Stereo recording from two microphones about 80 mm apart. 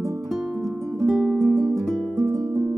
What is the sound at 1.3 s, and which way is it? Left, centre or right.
Music, right.